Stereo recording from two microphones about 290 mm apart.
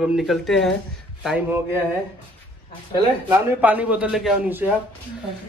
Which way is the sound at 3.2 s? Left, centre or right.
Centre.